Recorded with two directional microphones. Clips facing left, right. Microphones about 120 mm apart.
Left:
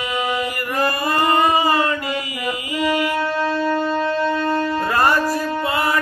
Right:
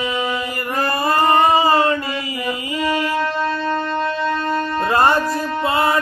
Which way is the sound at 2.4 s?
30° right (ahead or behind).